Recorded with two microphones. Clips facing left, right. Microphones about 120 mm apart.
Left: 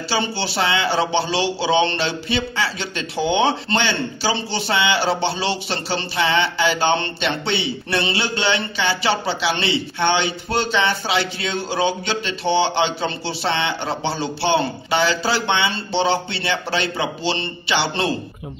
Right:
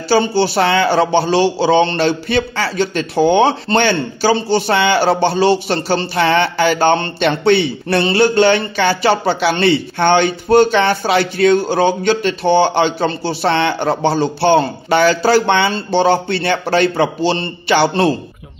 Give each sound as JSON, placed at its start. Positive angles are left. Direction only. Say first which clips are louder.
{"t": 0.1, "sound": "speech", "louder": "right 10 dB", "side_deg": -45}